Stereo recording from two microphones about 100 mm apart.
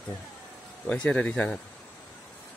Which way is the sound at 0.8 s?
10° left (ahead or behind).